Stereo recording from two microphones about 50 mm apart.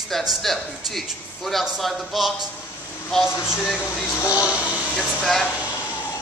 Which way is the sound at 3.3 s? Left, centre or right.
Left.